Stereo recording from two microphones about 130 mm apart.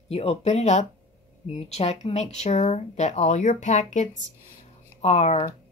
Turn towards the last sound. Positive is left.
turn(degrees=60)  # may be behind; listen again after turning